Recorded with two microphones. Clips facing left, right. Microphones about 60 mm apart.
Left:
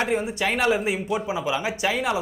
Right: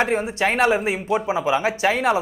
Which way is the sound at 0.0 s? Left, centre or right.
Right.